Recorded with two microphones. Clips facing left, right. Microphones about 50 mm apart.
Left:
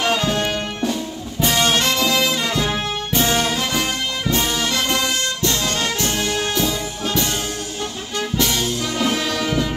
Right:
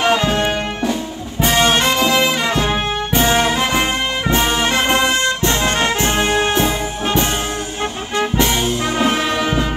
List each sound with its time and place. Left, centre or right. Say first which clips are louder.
0.0 s music: right 4 dB; right
8.2 s music: right 4 dB; right